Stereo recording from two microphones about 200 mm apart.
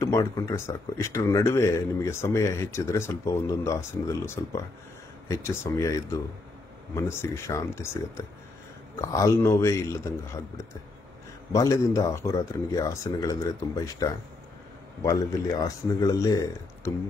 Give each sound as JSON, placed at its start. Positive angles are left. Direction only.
{"t": 0.0, "sound": "speech", "side_deg": 15}